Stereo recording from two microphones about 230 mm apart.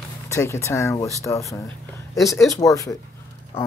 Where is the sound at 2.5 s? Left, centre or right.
Centre.